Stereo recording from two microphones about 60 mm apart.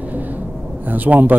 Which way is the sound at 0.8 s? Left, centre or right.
Right.